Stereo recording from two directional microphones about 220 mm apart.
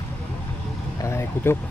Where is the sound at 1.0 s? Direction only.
10° left (ahead or behind).